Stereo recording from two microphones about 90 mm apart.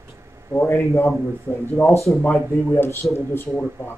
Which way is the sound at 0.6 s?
30° left (ahead or behind).